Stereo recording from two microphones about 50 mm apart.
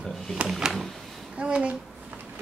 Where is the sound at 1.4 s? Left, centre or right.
Right.